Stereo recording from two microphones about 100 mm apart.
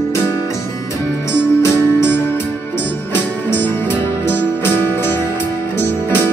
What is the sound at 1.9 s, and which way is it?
Music, 25° left (ahead or behind).